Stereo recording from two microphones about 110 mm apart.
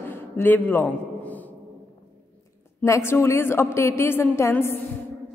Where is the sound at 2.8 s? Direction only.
25° left (ahead or behind).